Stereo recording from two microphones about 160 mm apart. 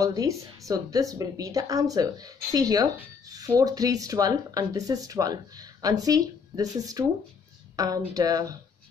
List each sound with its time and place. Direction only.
0.0 s speech: 20° right (ahead or behind)